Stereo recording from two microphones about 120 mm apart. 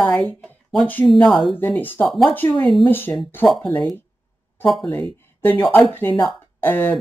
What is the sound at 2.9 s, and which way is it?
Speech, 15° left (ahead or behind).